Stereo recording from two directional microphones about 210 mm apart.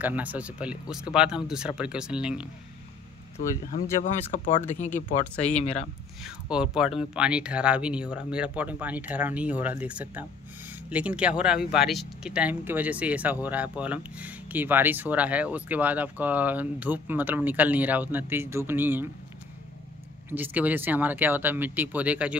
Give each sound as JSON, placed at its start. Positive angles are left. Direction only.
{"t": 0.0, "sound": "speech", "side_deg": -5}
{"t": 4.0, "sound": "speech", "side_deg": 35}
{"t": 6.2, "sound": "speech", "side_deg": -5}
{"t": 20.2, "sound": "speech", "side_deg": -10}